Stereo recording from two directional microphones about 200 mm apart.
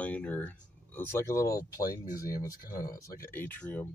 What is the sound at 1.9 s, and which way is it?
Speech, 45° left (ahead or behind).